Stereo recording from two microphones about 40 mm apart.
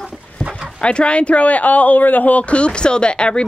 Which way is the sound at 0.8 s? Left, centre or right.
Left.